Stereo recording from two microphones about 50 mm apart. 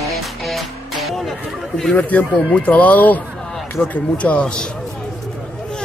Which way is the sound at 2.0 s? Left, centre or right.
Left.